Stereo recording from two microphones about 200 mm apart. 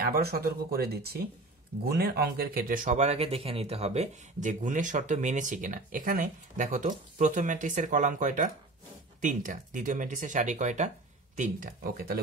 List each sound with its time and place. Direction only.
0.0 s speech: 50° right (ahead or behind)